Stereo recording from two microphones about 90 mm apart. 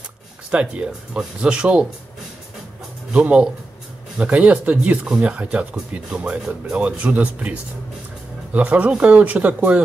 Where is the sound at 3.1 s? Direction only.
10° right (ahead or behind).